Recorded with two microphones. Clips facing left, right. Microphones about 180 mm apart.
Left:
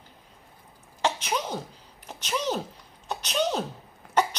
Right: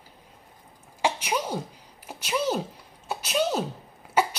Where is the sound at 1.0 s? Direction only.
10° right (ahead or behind).